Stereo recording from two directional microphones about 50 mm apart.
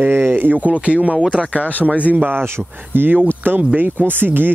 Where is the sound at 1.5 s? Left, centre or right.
Left.